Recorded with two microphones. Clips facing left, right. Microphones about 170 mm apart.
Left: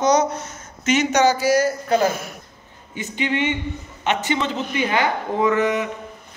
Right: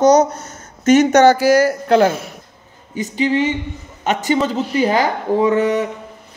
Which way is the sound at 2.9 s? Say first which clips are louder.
Right 6 dB; 40° right (ahead or behind).